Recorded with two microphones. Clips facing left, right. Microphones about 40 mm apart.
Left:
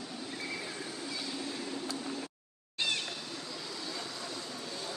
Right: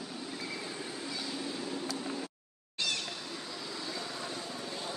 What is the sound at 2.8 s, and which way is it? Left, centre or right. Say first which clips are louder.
Cat: left 1 dB; left.